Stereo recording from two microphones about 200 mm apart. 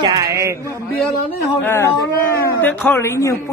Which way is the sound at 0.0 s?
15° right (ahead or behind).